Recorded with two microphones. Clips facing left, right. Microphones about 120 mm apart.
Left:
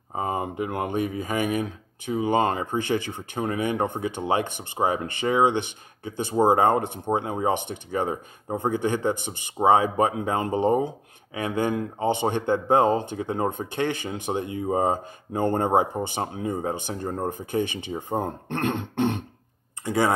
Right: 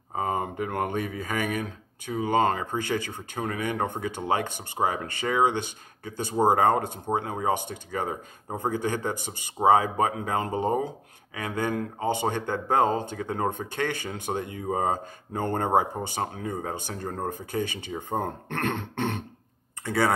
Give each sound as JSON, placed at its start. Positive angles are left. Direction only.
{"t": 0.1, "sound": "speech", "side_deg": 20}